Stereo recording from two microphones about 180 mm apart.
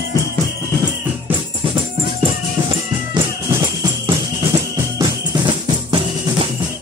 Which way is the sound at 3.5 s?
20° right (ahead or behind).